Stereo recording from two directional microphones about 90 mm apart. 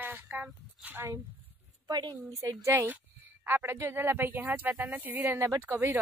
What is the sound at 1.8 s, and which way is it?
Speech, 50° right (ahead or behind).